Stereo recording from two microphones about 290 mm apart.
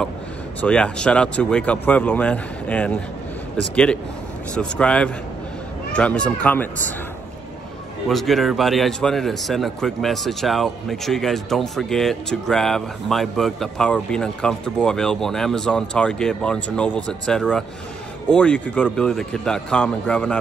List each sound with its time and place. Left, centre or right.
0.6 s a man's voice: centre
8.1 s a man's voice: centre